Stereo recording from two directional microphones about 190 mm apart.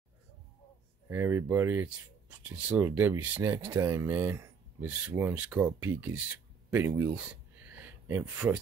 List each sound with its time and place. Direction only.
1.0 s speech: 10° right (ahead or behind)